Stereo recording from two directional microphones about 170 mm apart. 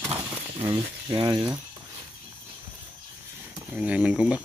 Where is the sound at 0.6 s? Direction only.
30° right (ahead or behind).